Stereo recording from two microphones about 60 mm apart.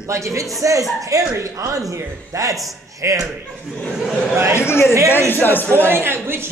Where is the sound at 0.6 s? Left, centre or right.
Right.